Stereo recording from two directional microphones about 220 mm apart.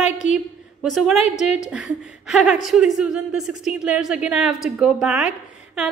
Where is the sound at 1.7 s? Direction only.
Centre (ahead or behind).